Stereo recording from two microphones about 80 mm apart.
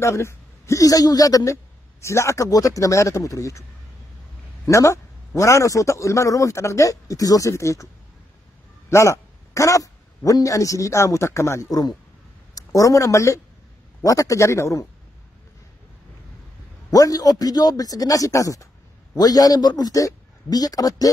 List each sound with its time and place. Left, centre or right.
0.0 s speech: left
4.6 s a man's voice: left
16.9 s a man's voice: left
19.1 s a man's voice: left